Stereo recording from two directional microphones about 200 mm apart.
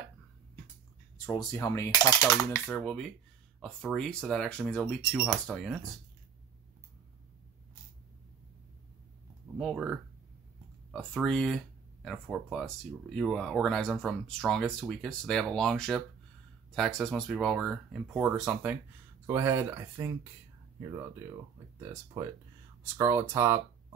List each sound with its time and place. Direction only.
1.1 s speech: 15° left (ahead or behind); by 5.9 s centre (ahead or behind)
9.6 s speech: centre (ahead or behind)
21.7 s speech: 15° right (ahead or behind)